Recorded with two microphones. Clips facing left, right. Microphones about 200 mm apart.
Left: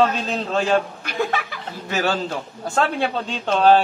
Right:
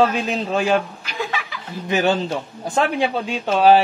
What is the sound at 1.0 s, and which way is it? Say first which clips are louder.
Chuckle: left 3 dB; 55° left (ahead or behind).